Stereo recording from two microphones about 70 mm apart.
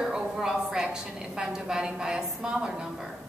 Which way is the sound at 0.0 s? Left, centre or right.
Centre.